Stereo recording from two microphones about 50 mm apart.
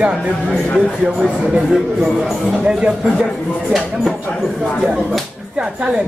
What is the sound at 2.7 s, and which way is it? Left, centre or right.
Speech, centre.